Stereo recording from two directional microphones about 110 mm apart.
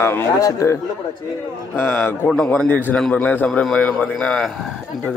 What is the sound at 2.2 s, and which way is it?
A man's voice, 5° left (ahead or behind).